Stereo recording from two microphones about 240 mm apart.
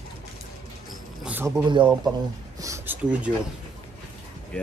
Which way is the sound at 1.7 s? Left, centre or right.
Centre.